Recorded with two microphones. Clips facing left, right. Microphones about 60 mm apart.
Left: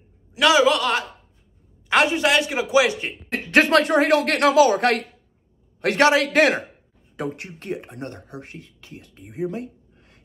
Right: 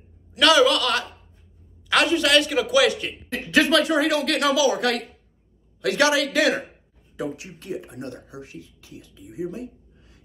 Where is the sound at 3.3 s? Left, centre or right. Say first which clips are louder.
Left 2 dB; left.